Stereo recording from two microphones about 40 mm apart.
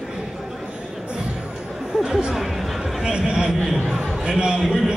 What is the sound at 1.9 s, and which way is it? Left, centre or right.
Chatter, centre.